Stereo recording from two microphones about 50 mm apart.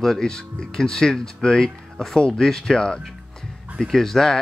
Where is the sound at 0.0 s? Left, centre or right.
Centre.